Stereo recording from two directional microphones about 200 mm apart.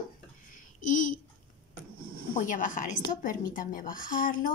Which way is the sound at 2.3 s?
40° left (ahead or behind).